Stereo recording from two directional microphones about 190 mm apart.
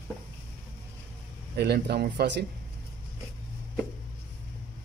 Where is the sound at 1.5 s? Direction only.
60° right (ahead or behind).